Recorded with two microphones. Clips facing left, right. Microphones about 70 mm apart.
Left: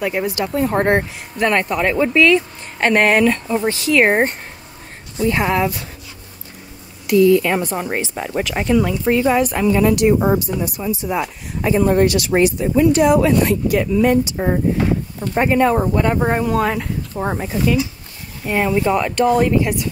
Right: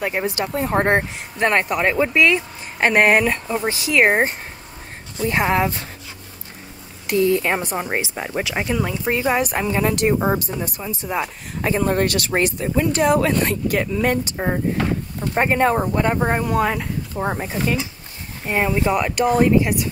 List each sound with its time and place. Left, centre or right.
0.0 s speech: right; by 4.4 s centre
5.2 s speech: right
7.1 s speech: right; by 9.1 s centre
9.1 s speech: right
15.3 s speech: right
15.8 s speech: centre
16.2 s speech: centre
17.5 s speech: right
18.4 s speech: right
18.7 s speech: centre